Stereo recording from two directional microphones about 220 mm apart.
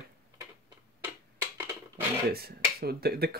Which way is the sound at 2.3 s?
45° right (ahead or behind).